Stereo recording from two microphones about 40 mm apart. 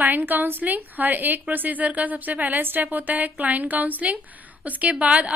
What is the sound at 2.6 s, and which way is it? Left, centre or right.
A woman's voice, right.